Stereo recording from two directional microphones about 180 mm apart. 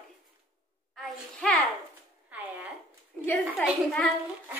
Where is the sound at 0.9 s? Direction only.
Centre (ahead or behind).